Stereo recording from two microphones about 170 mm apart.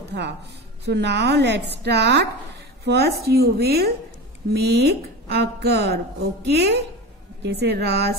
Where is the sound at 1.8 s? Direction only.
75° right (ahead or behind).